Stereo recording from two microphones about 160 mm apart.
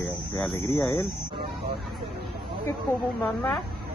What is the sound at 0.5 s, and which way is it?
Speech, 15° left (ahead or behind).